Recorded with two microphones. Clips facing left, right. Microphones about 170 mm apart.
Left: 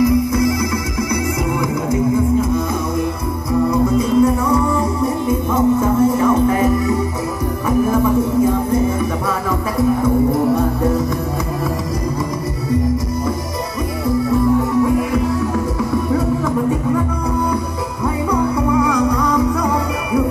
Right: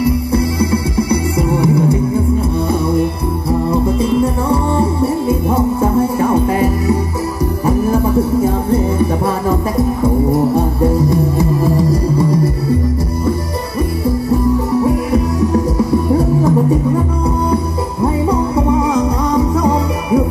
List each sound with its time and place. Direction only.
0.0 s music: 30° right (ahead or behind)
10.0 s music: 30° right (ahead or behind)
14.8 s music: 35° right (ahead or behind)
18.0 s music: 30° right (ahead or behind)